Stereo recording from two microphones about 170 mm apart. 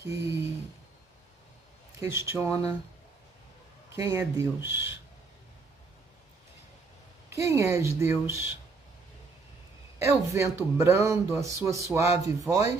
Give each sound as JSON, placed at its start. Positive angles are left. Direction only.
{"t": 0.0, "sound": "speech", "side_deg": -15}
{"t": 2.0, "sound": "speech", "side_deg": -15}
{"t": 3.9, "sound": "speech", "side_deg": -15}
{"t": 4.6, "sound": "speech", "side_deg": 90}
{"t": 7.2, "sound": "speech", "side_deg": -15}
{"t": 10.3, "sound": "speech", "side_deg": -15}